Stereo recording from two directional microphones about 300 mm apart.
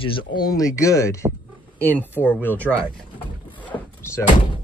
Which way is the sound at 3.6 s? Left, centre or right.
Centre.